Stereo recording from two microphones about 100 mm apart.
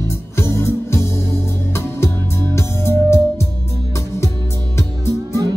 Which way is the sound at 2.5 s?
25° left (ahead or behind).